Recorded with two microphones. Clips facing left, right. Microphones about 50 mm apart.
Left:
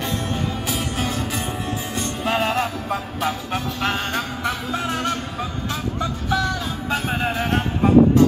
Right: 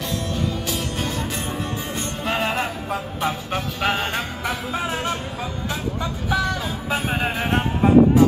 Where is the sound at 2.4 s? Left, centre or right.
Centre.